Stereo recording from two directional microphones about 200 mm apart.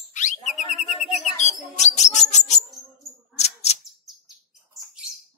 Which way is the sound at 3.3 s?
30° left (ahead or behind).